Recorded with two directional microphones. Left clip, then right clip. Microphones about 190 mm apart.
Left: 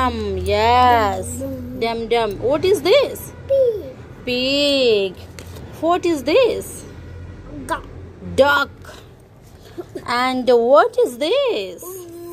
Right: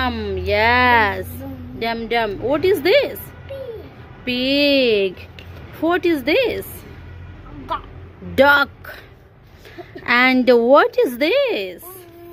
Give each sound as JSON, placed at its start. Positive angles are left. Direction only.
{"t": 0.0, "sound": "a woman's voice", "side_deg": -15}
{"t": 4.2, "sound": "a woman's voice", "side_deg": -20}
{"t": 8.4, "sound": "a woman's voice", "side_deg": -25}
{"t": 10.0, "sound": "a woman's voice", "side_deg": -25}